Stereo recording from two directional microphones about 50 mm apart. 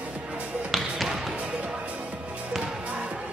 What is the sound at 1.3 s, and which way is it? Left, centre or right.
Basketball bounce, centre.